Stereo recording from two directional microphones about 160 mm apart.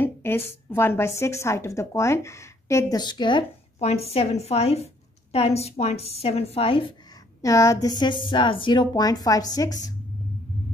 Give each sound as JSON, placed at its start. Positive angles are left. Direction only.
{"t": 0.0, "sound": "a woman's voice", "side_deg": 15}
{"t": 7.4, "sound": "a woman's voice", "side_deg": 20}
{"t": 8.0, "sound": "a woman's voice", "side_deg": 30}